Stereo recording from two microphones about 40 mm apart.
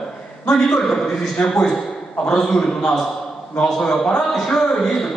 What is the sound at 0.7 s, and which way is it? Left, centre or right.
A man's voice, centre.